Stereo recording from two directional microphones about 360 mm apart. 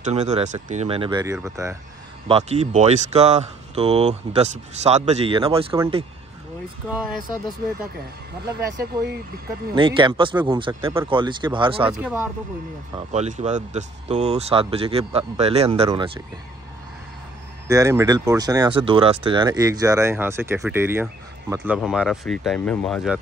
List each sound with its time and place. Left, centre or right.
0.0 s speech: centre
9.8 s speech: centre
12.9 s speech: centre
17.6 s speech: centre